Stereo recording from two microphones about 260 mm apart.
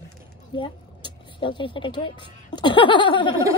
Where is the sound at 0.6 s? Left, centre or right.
Centre.